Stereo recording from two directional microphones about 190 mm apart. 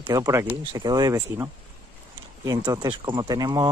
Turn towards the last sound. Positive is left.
turn(degrees=-20)  # may be behind; listen again after turning